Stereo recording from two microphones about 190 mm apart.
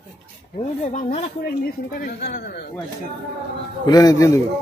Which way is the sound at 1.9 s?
50° left (ahead or behind).